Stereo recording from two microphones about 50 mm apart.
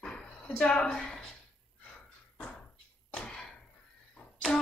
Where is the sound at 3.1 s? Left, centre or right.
Centre.